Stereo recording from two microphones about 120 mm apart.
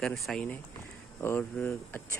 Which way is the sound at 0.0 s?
Centre (ahead or behind).